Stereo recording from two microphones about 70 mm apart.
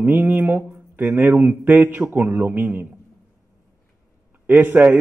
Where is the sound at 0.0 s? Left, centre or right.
Right.